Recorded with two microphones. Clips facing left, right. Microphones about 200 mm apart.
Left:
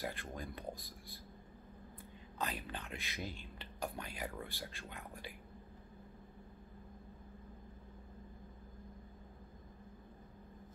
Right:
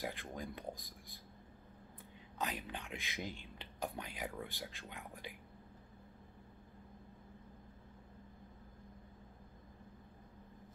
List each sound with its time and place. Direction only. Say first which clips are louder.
0.0 s speech: even; 15° right (ahead or behind)
2.3 s speech: even; 15° right (ahead or behind)